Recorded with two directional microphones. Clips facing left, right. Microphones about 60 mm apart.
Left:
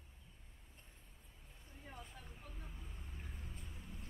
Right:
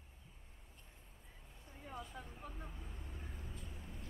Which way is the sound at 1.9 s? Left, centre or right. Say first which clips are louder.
Right 6 dB; right.